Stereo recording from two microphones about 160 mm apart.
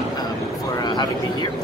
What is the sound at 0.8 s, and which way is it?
Speech, 25° left (ahead or behind).